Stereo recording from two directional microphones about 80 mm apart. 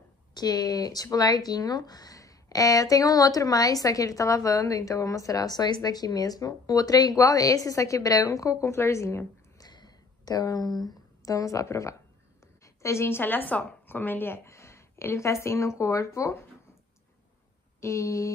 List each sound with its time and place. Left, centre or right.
0.3 s speech: left
9.6 s a sound: left
12.6 s a woman's voice: left
17.7 s speech: left